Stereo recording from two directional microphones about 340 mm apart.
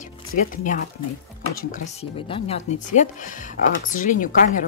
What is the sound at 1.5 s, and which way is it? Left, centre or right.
Speech, left.